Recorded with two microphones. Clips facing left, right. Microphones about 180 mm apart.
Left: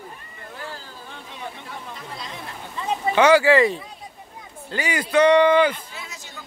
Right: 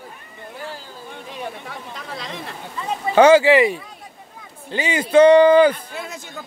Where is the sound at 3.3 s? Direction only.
20° right (ahead or behind); by 5.7 s 35° right (ahead or behind).